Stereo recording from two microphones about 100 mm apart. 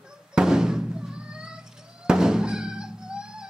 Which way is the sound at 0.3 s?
5° right (ahead or behind).